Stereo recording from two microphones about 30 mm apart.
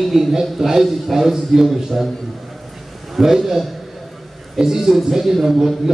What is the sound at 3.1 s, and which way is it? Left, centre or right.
A man's voice, centre.